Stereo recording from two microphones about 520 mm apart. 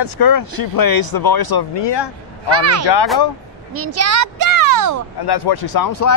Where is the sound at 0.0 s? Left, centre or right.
Left.